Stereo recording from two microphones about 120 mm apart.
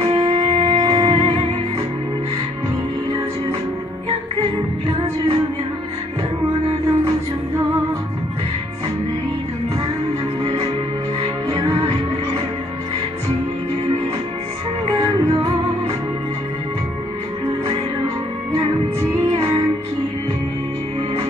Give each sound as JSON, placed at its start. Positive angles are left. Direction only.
{"t": 0.0, "sound": "music", "side_deg": -45}
{"t": 10.4, "sound": "music", "side_deg": -55}
{"t": 15.0, "sound": "music", "side_deg": -35}